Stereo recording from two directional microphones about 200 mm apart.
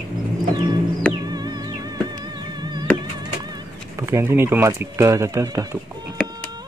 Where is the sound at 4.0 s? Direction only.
15° right (ahead or behind).